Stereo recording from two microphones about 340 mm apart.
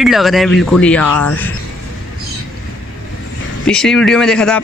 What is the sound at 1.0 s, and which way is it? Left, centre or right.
Speech, left.